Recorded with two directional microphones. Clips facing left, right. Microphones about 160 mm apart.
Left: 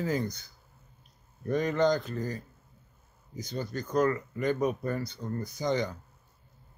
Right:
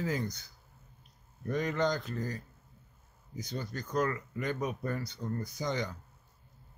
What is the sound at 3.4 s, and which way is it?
Speech, 30° left (ahead or behind).